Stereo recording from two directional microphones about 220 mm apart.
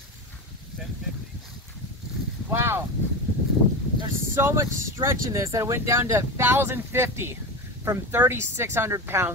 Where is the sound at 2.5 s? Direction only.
10° right (ahead or behind).